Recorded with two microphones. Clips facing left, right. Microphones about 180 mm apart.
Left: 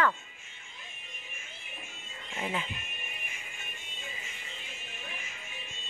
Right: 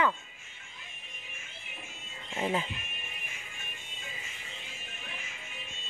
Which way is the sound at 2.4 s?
30° right (ahead or behind).